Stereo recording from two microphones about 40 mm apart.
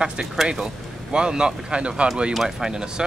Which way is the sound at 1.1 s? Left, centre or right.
Right.